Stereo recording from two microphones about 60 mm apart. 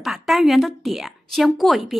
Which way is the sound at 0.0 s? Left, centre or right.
Centre.